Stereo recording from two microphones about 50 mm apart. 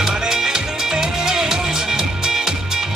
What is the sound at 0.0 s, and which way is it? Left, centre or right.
Music, centre.